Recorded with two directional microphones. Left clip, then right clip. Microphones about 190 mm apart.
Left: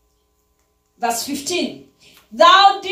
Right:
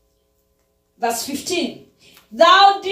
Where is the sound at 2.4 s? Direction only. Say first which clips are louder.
Left 1 dB; 30° left (ahead or behind).